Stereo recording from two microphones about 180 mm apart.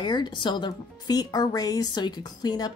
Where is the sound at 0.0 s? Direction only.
25° left (ahead or behind).